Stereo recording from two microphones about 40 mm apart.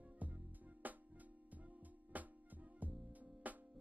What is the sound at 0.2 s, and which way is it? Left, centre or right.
Music, right.